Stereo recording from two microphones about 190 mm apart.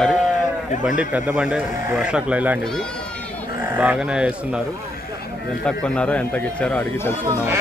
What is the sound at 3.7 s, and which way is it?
Speech, 5° right (ahead or behind).